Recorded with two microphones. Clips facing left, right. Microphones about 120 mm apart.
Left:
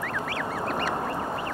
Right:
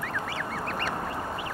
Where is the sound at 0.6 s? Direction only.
10° left (ahead or behind).